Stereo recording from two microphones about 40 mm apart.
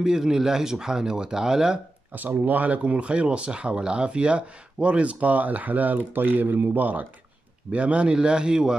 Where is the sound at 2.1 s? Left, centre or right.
Right.